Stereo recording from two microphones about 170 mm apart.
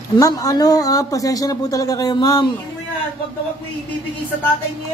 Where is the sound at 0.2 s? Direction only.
20° left (ahead or behind).